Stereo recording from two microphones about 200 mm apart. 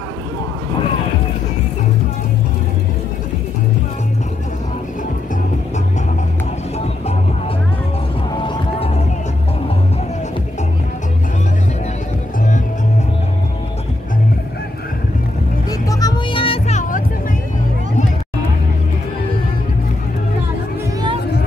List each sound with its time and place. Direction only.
8.4 s music: 25° left (ahead or behind)
15.9 s music: 20° left (ahead or behind); by 17.0 s 35° left (ahead or behind)